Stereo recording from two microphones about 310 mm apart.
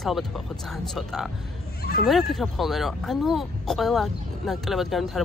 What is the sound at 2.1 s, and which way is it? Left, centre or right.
Speech, centre.